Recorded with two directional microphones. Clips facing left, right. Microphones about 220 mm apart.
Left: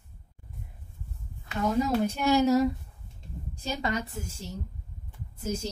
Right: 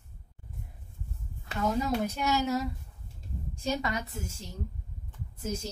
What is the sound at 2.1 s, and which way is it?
Speech, 30° left (ahead or behind).